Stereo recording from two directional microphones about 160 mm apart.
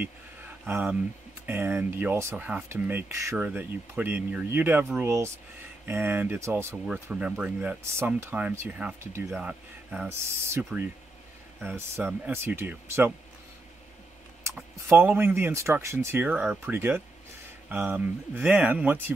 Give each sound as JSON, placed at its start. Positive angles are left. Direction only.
{"t": 0.7, "sound": "speech", "side_deg": -10}
{"t": 14.9, "sound": "speech", "side_deg": -10}